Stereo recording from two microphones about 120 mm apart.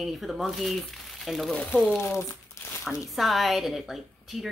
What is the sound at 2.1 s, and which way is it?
Crumpling, 25° left (ahead or behind).